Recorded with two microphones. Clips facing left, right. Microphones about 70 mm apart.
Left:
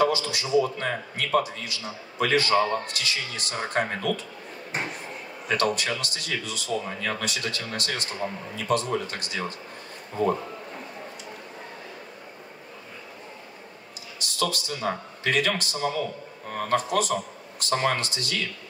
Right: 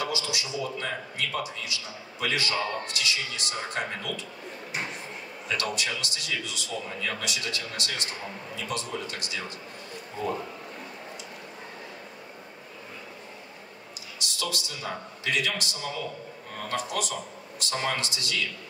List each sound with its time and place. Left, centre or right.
0.0 s a man's voice: left
14.4 s a man's voice: left